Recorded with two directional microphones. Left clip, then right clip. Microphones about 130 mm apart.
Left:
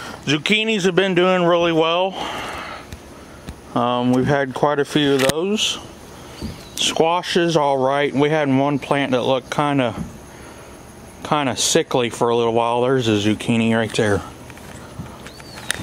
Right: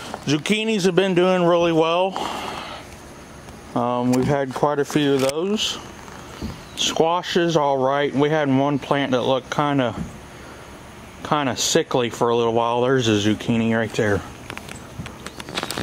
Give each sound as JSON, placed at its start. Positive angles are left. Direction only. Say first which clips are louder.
{"t": 0.0, "sound": "a man's voice", "louder": "left 3 dB", "side_deg": -5}
{"t": 3.7, "sound": "speech", "louder": "left 2 dB", "side_deg": 5}
{"t": 6.8, "sound": "speech", "louder": "left 2 dB", "side_deg": 5}
{"t": 11.2, "sound": "speech", "louder": "left 2 dB", "side_deg": 5}